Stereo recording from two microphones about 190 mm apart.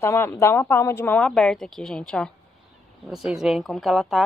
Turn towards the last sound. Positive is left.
turn(degrees=0)  # may be behind; listen again after turning